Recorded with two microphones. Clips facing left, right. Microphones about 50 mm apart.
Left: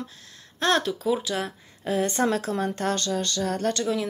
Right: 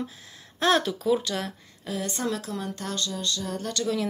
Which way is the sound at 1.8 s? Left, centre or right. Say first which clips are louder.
Left 7 dB; left.